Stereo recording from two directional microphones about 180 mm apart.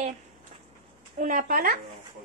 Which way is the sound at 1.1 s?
45° right (ahead or behind).